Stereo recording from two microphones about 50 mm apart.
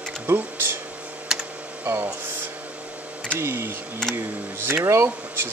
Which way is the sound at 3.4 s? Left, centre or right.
Right.